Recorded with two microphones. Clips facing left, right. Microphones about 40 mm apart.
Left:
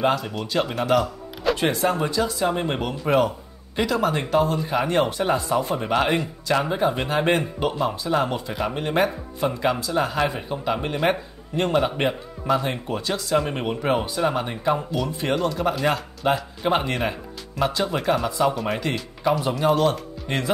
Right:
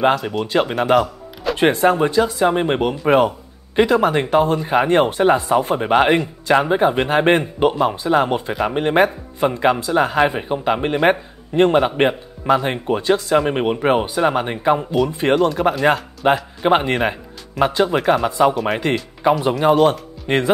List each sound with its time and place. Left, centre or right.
0.1 s speech: centre
1.6 s speech: right
15.3 s speech: centre
16.2 s speech: right
17.9 s speech: centre
19.2 s speech: right